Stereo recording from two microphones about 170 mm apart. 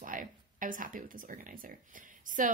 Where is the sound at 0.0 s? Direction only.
50° right (ahead or behind).